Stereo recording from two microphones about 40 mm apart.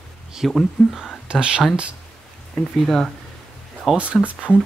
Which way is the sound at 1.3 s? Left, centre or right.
Right.